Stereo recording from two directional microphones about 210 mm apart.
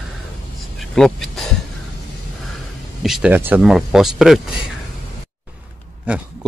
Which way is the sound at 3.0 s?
5° right (ahead or behind).